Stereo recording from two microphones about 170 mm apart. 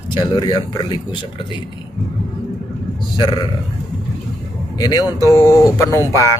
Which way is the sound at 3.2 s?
25° left (ahead or behind).